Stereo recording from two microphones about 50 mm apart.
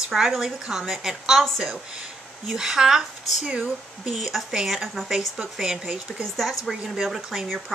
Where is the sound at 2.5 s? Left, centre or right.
Centre.